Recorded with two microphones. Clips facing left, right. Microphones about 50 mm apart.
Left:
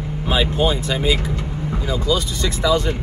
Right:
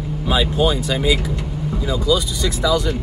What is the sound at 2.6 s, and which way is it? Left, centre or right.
Speech, left.